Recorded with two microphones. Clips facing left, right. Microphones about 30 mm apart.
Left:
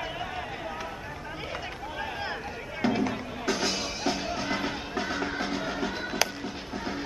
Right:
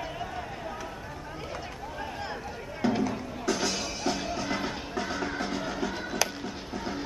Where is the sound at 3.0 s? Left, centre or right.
Left.